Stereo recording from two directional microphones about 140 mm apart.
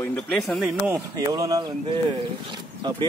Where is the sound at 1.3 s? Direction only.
25° right (ahead or behind).